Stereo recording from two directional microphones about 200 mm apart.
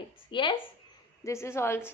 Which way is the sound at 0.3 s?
25° left (ahead or behind).